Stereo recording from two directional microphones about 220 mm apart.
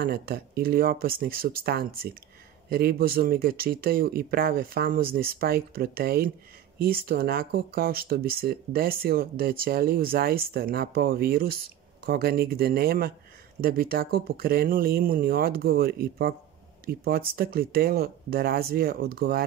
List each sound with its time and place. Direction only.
0.0 s speech: 45° right (ahead or behind)